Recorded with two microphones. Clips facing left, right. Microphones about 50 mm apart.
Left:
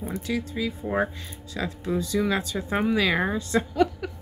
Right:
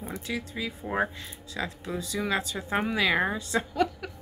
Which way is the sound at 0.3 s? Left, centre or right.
Centre.